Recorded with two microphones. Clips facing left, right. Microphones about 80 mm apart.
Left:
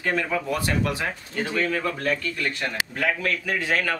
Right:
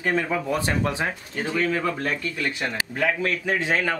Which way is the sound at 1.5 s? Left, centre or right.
Centre.